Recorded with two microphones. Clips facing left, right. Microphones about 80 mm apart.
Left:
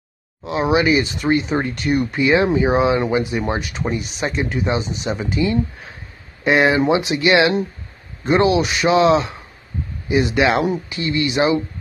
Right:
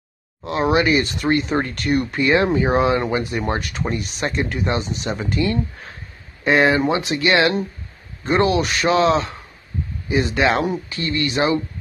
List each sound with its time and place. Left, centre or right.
0.4 s speech: centre